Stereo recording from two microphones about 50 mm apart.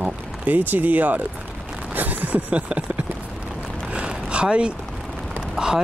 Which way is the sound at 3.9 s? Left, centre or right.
Right.